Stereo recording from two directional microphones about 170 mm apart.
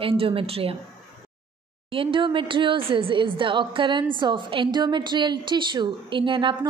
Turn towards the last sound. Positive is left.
turn(degrees=-30)  # may be behind; listen again after turning